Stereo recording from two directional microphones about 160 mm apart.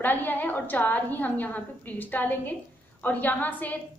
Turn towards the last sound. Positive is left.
turn(degrees=10)  # may be behind; listen again after turning